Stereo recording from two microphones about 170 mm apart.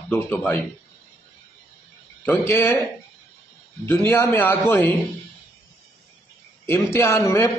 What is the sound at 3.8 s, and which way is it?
A man's voice, 15° left (ahead or behind).